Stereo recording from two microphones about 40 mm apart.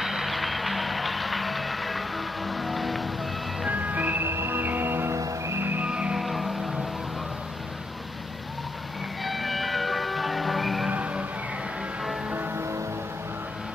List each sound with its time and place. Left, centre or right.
0.0 s music: centre
3.6 s music: right
4.2 s music: right
5.9 s music: right
6.1 s music: centre
9.2 s church bell: centre
10.9 s music: right